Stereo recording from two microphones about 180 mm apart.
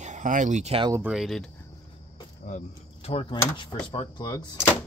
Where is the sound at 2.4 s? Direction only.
40° left (ahead or behind); by 4.6 s 20° left (ahead or behind).